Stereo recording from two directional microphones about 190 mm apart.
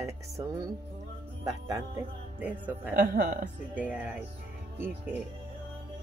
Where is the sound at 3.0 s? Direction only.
50° right (ahead or behind).